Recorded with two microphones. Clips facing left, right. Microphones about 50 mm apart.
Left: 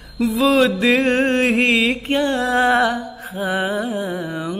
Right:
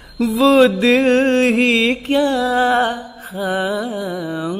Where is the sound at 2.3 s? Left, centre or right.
Left.